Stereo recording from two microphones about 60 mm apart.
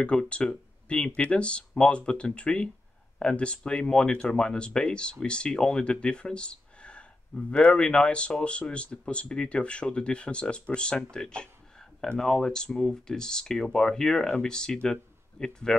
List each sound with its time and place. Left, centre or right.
0.0 s speech: centre